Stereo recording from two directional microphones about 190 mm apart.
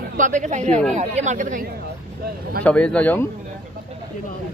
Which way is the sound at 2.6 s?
5° left (ahead or behind).